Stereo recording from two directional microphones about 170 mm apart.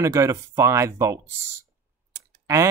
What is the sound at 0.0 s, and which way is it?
Speech, 15° right (ahead or behind).